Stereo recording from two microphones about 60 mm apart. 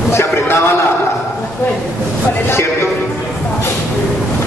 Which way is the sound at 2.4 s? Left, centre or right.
Left.